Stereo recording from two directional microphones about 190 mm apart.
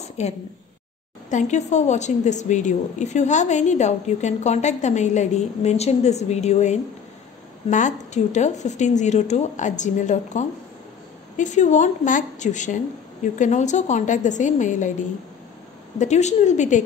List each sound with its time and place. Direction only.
0.2 s a woman's voice: 35° left (ahead or behind)
16.0 s a woman's voice: 35° left (ahead or behind)